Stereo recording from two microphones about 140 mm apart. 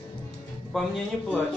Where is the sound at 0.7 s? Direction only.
Centre (ahead or behind).